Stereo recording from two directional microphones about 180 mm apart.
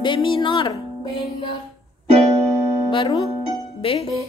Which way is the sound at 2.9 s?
25° left (ahead or behind).